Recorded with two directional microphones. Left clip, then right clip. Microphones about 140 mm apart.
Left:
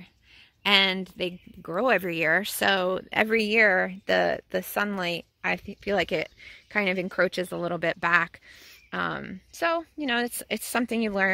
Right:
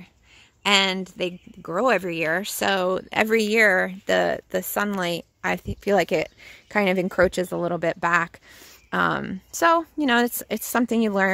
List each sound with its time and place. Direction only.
0.7 s speech: centre (ahead or behind)
8.9 s speech: 30° right (ahead or behind)
10.7 s speech: 25° right (ahead or behind)